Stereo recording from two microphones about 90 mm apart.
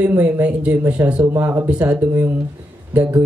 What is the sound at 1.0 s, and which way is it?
Speech, 30° right (ahead or behind).